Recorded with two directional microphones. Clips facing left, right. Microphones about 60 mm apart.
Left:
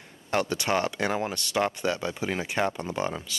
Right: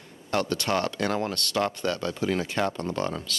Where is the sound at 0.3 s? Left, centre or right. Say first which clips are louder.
Even; centre.